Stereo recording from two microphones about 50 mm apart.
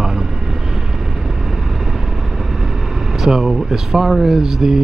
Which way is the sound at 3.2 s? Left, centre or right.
Centre.